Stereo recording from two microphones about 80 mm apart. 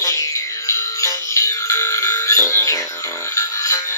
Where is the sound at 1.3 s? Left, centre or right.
Left.